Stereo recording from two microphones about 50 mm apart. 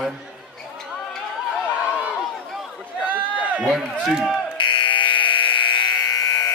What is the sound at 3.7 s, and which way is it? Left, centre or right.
Speech, centre.